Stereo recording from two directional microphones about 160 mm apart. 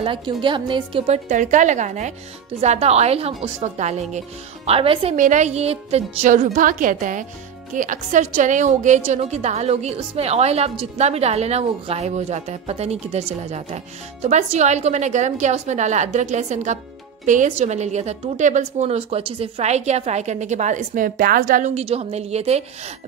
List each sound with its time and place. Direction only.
0.0 s a woman's voice: 30° right (ahead or behind)
5.1 s a woman's voice: 50° right (ahead or behind)